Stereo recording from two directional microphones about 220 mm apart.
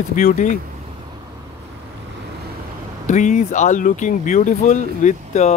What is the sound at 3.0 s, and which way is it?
Speech, 35° left (ahead or behind).